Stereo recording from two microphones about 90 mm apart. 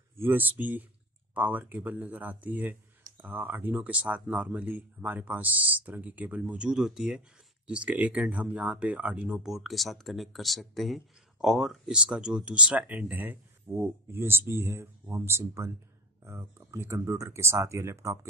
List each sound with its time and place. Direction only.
0.2 s speech: 20° right (ahead or behind)